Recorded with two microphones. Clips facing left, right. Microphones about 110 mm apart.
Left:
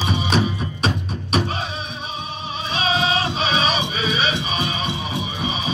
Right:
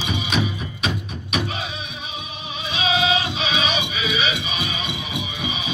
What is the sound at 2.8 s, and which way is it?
Music, 40° left (ahead or behind).